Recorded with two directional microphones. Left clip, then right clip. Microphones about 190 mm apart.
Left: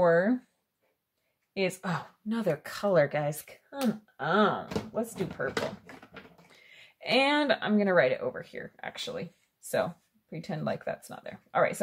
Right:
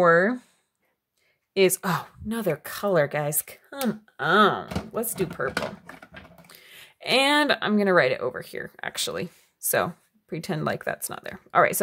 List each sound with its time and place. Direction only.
0.0 s speech: 55° right (ahead or behind)
1.5 s speech: 50° right (ahead or behind)
2.3 s speech: 25° right (ahead or behind); by 5.5 s 40° right (ahead or behind)
6.5 s speech: 35° right (ahead or behind)